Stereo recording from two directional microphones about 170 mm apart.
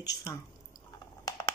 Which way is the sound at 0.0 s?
20° left (ahead or behind).